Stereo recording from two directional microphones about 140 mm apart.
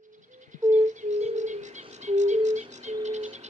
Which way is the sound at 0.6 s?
60° right (ahead or behind).